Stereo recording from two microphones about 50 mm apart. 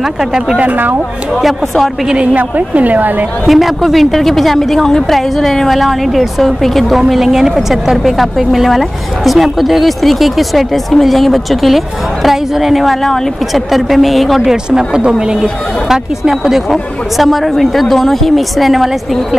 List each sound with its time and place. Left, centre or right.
0.2 s speech: centre
0.6 s a woman's voice: right
2.3 s a woman's voice: right
3.4 s speech: centre